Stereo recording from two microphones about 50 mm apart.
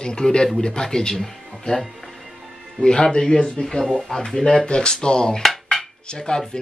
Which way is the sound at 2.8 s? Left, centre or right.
Centre.